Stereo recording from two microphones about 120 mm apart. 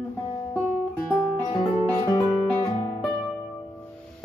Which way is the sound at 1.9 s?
30° left (ahead or behind).